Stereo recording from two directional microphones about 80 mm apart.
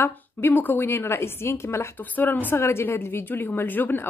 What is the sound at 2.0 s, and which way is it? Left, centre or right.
A woman's voice, left.